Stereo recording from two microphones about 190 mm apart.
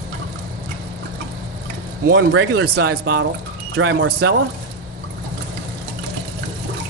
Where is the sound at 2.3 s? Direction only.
65° right (ahead or behind).